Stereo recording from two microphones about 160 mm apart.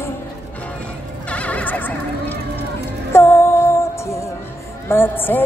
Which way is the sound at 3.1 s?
15° left (ahead or behind).